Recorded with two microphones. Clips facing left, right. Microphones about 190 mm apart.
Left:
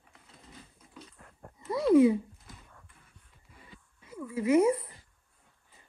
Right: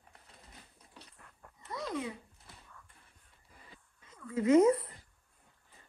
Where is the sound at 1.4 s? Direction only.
45° left (ahead or behind).